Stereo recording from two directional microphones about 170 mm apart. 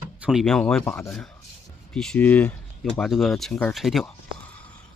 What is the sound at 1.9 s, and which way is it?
A man's voice, 5° left (ahead or behind).